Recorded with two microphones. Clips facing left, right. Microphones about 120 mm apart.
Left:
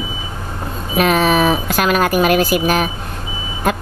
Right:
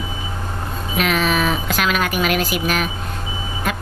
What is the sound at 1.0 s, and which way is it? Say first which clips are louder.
A woman's voice: left 5 dB; 40° left (ahead or behind).